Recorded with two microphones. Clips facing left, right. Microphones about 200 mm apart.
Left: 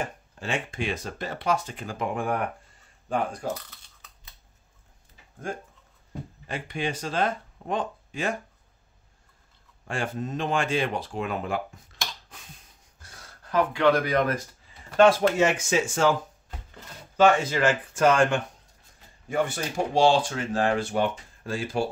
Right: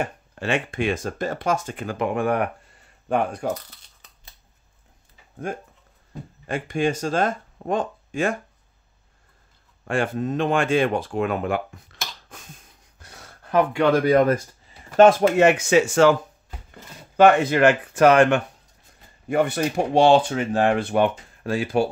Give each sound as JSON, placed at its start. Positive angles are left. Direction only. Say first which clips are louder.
{"t": 0.0, "sound": "speech", "louder": "right 5 dB", "side_deg": -65}
{"t": 6.4, "sound": "speech", "louder": "right 8 dB", "side_deg": -50}
{"t": 9.8, "sound": "speech", "louder": "right 7 dB", "side_deg": -60}
{"t": 13.5, "sound": "speech", "louder": "right 5 dB", "side_deg": -55}
{"t": 15.0, "sound": "speech", "louder": "right 4 dB", "side_deg": -50}
{"t": 17.2, "sound": "speech", "louder": "right 5 dB", "side_deg": -60}